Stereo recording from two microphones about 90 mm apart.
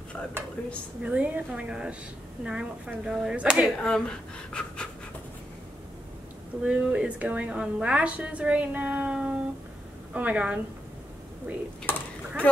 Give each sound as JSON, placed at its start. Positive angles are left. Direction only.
{"t": 1.0, "sound": "a woman's voice", "side_deg": -15}
{"t": 3.8, "sound": "speech", "side_deg": 10}
{"t": 6.6, "sound": "a woman's voice", "side_deg": -15}
{"t": 11.9, "sound": "a sound", "side_deg": 20}